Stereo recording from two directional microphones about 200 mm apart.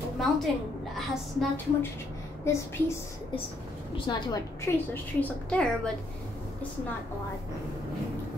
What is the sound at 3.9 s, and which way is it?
A woman's voice, 20° left (ahead or behind).